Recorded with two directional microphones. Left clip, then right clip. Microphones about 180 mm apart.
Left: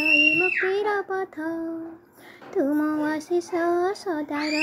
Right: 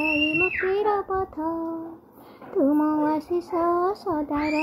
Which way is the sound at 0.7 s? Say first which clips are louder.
Right 1 dB; 10° right (ahead or behind).